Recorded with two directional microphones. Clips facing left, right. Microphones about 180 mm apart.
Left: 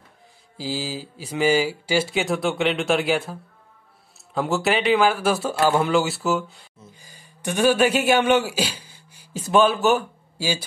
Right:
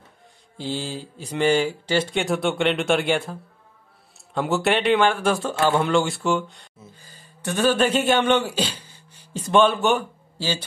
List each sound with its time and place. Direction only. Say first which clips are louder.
0.6 s speech: even; 5° left (ahead or behind)